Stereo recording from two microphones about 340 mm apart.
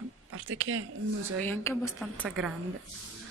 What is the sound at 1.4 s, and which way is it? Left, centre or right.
Speech, centre.